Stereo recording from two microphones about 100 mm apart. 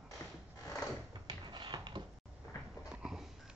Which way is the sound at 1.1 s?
45° right (ahead or behind).